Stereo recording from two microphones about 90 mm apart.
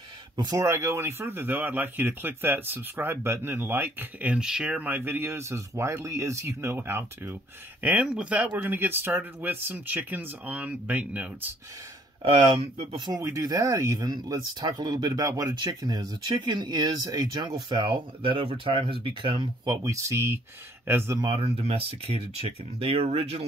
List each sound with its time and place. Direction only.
0.6 s speech: 35° right (ahead or behind)
8.0 s speech: 10° right (ahead or behind)
12.2 s speech: 70° right (ahead or behind)
13.1 s speech: 40° right (ahead or behind); by 19.5 s 70° right (ahead or behind)
19.6 s speech: 45° right (ahead or behind); by 21.2 s 25° right (ahead or behind)
21.4 s speech: 90° right